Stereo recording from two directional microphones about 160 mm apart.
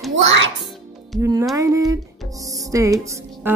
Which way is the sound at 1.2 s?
20° right (ahead or behind).